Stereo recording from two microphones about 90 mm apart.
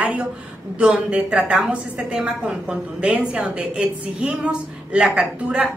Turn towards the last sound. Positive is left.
turn(degrees=-15)  # may be behind; listen again after turning